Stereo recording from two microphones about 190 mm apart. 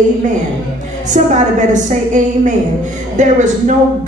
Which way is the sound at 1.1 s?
40° right (ahead or behind).